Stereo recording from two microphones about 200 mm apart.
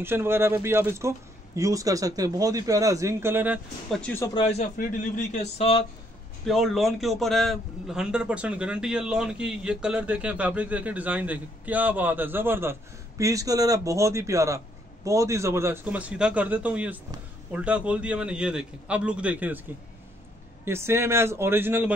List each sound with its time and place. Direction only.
0.0 s a man's voice: 10° right (ahead or behind)
4.0 s speech: 10° left (ahead or behind)
4.3 s a man's voice: 30° left (ahead or behind)
4.7 s a man's voice: 40° left (ahead or behind)
6.4 s a man's voice: centre (ahead or behind)
20.6 s a man's voice: 10° right (ahead or behind)